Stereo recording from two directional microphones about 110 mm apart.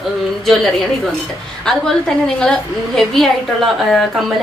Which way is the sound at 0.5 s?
Centre (ahead or behind).